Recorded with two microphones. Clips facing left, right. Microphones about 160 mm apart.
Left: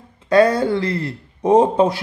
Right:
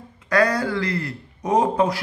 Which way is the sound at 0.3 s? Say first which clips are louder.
Left 6 dB; 25° left (ahead or behind).